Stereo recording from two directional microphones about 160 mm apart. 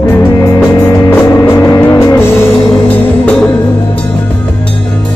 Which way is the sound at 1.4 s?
20° left (ahead or behind).